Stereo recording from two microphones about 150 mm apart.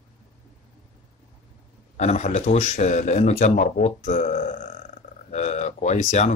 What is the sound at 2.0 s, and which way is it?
Speech, 50° left (ahead or behind).